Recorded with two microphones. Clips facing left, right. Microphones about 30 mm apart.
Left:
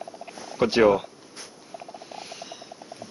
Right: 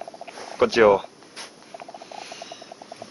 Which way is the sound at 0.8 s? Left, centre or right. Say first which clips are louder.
Right 2 dB; centre.